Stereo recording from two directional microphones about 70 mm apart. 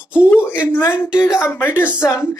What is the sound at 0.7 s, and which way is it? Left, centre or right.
Speech, left.